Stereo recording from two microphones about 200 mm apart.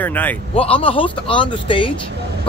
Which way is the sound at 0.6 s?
30° left (ahead or behind).